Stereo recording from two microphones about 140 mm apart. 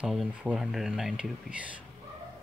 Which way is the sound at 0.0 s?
5° right (ahead or behind).